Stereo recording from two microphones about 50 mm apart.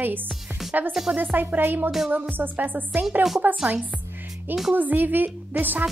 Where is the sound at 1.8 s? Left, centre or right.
Centre.